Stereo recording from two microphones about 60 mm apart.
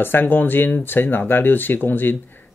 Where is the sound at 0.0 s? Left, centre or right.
Left.